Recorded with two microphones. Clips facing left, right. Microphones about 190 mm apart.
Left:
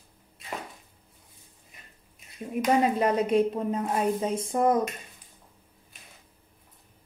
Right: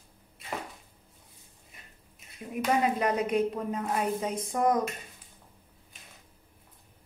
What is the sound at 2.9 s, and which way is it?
A woman's voice, 25° left (ahead or behind).